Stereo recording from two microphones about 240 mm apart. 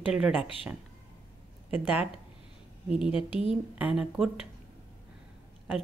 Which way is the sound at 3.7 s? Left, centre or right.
Centre.